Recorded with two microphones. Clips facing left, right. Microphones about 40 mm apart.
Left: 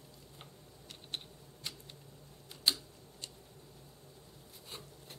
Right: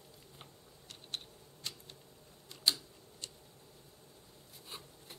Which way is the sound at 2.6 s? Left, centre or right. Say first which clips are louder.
Even; centre.